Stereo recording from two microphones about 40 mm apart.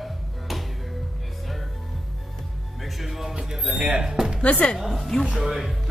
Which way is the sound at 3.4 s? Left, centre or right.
Centre.